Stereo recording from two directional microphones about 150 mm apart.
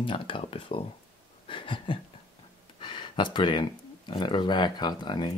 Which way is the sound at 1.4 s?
35° left (ahead or behind).